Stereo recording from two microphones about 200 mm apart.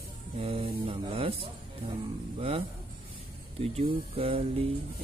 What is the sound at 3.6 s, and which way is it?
Speech, 30° right (ahead or behind).